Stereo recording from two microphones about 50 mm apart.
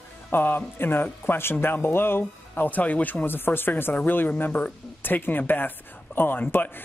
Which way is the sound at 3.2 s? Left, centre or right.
Left.